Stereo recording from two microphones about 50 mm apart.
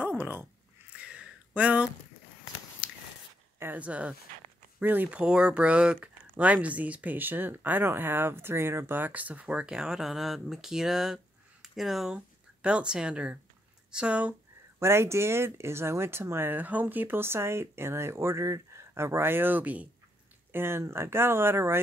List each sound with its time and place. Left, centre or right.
0.0 s a sound: right
0.9 s a sound: right
3.7 s speech: right
4.7 s speech: right
5.1 s speech: centre
12.6 s speech: centre
14.8 s speech: right
17.2 s speech: right
20.5 s speech: right